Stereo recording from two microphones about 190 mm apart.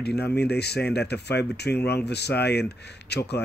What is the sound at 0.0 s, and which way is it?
Speech, 60° left (ahead or behind).